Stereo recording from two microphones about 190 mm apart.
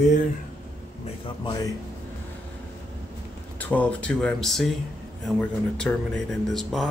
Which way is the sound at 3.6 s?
10° left (ahead or behind).